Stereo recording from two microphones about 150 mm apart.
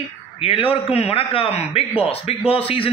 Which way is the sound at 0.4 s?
40° left (ahead or behind).